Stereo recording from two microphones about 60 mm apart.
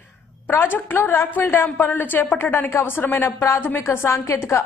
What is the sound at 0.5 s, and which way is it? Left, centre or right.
A woman's voice, left.